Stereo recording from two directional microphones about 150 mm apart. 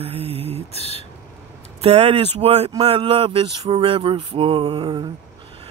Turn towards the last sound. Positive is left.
turn(degrees=-35)  # may be behind; listen again after turning